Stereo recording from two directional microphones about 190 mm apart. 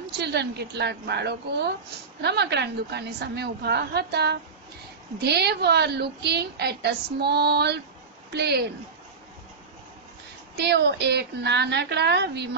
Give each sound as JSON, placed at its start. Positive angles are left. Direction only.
{"t": 0.0, "sound": "a woman's voice", "side_deg": -60}
{"t": 10.6, "sound": "a woman's voice", "side_deg": -60}